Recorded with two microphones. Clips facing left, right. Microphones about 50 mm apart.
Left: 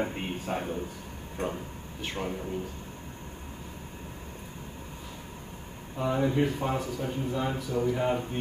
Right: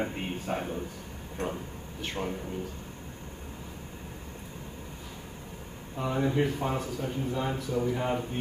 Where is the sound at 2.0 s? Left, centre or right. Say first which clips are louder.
Even; centre.